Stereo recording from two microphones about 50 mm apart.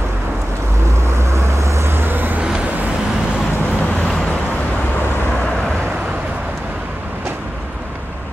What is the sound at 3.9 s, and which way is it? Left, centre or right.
Boat, left.